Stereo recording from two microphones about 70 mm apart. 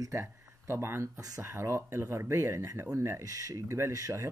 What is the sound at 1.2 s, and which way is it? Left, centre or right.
Speech, right.